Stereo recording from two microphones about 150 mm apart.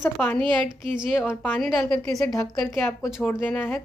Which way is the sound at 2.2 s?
20° left (ahead or behind).